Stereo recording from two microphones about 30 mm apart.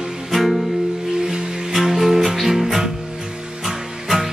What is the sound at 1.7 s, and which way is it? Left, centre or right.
Music, centre.